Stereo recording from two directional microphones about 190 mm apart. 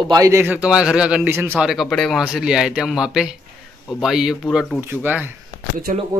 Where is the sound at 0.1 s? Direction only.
15° right (ahead or behind).